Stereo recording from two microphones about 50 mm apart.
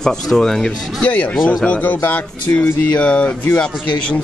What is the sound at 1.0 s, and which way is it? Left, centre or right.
Speech, left.